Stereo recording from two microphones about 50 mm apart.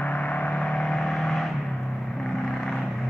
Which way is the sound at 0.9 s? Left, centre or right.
Centre.